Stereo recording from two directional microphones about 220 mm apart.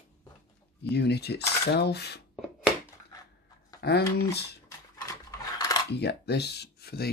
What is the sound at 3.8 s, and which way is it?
Speech, 45° left (ahead or behind).